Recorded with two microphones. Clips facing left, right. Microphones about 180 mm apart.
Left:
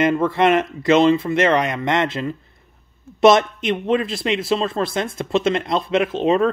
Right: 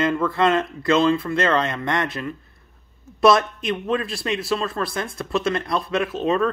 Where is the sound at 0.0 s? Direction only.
20° left (ahead or behind).